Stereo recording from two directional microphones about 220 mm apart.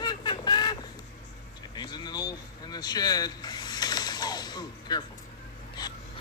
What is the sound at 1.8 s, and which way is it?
Vehicle, 20° left (ahead or behind).